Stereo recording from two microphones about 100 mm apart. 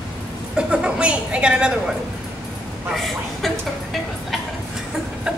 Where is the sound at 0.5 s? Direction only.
10° right (ahead or behind).